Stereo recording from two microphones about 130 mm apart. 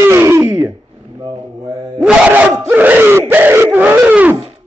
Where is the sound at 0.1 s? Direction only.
20° right (ahead or behind).